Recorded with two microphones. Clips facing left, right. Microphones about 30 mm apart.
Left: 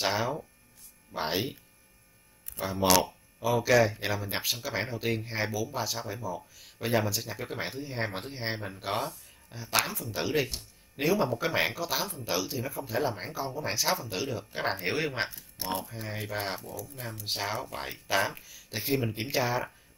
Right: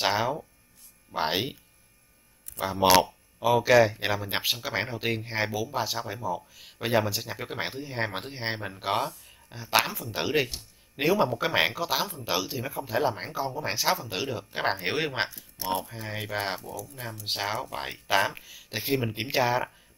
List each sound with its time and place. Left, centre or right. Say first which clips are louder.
0.0 s speech: right 3 dB; centre
1.1 s speech: right 3 dB; right
3.4 s speech: right 4 dB; centre